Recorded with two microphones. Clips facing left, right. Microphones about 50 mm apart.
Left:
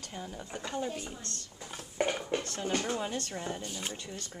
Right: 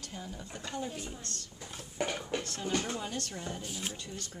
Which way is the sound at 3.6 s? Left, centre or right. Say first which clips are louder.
Even; centre.